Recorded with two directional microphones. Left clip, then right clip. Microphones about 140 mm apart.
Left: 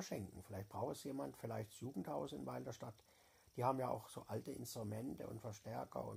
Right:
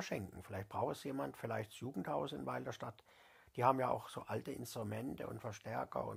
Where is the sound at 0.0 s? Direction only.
15° right (ahead or behind).